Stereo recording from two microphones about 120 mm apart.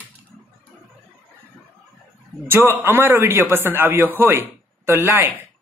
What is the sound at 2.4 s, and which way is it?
A man's voice, 20° right (ahead or behind).